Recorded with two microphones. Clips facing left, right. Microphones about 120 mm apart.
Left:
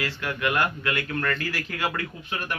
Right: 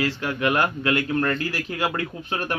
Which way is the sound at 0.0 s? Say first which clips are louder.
Right 4 dB; 25° right (ahead or behind).